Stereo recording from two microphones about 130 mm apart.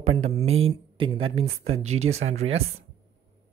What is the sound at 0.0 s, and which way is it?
Speech, 55° right (ahead or behind).